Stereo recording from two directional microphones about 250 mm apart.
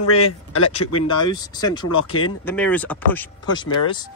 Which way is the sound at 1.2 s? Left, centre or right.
Centre.